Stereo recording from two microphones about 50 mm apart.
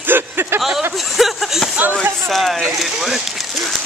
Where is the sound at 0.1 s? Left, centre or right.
Right.